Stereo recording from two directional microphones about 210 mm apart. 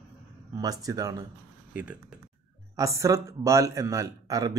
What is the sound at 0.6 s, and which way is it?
Speech, 15° right (ahead or behind).